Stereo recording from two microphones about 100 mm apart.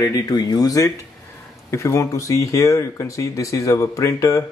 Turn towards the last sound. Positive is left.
turn(degrees=30)  # may be behind; listen again after turning